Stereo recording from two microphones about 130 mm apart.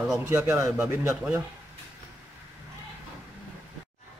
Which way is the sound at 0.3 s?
20° right (ahead or behind).